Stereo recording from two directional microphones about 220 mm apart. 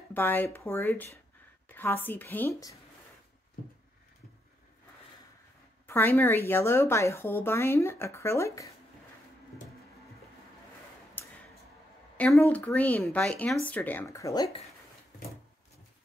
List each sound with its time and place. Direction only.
0.1 s a woman's voice: 10° left (ahead or behind)
5.9 s a woman's voice: 10° left (ahead or behind)
11.2 s a sound: 10° left (ahead or behind)
12.2 s a woman's voice: 5° left (ahead or behind)